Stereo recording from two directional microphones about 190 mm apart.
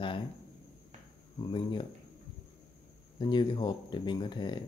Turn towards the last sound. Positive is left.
turn(degrees=25)  # may be behind; listen again after turning